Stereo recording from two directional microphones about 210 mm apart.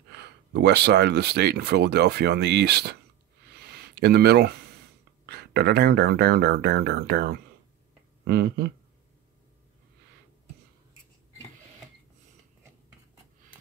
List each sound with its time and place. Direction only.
0.1 s speech: 50° right (ahead or behind)
3.6 s a sound: 50° right (ahead or behind)
5.2 s speech: 50° right (ahead or behind)